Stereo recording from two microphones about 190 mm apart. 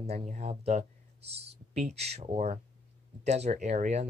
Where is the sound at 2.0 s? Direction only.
35° right (ahead or behind).